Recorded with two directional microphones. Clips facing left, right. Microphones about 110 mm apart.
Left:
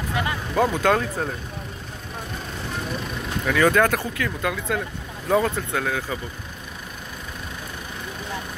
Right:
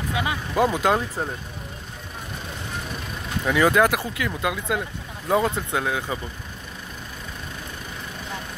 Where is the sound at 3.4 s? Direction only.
15° right (ahead or behind).